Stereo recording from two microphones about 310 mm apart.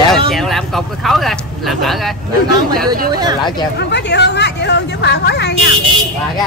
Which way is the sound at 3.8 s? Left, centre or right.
Left.